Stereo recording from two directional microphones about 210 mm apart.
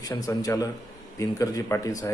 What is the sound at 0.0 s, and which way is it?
Speech, 15° left (ahead or behind).